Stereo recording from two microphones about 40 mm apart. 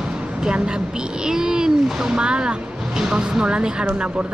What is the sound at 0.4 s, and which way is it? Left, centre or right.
Speech, right.